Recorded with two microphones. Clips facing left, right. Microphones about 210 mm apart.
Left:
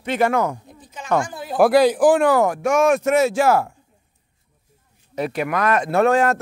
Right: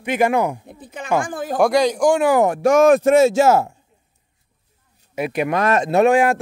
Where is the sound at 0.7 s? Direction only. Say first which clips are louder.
Right 5 dB; 60° right (ahead or behind).